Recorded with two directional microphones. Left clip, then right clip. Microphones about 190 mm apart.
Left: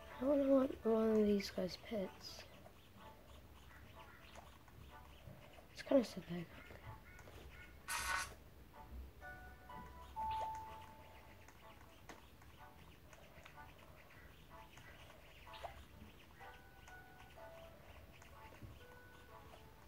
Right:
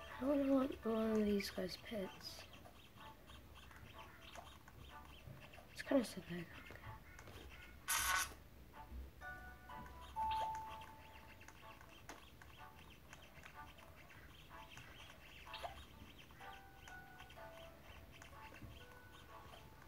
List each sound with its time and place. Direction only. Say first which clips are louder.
0.2 s speech: left 3 dB; 15° left (ahead or behind)
5.8 s speech: left 3 dB; 15° left (ahead or behind)
7.8 s a sound: right 3 dB; 30° right (ahead or behind)
10.2 s music: right 2 dB; 35° right (ahead or behind)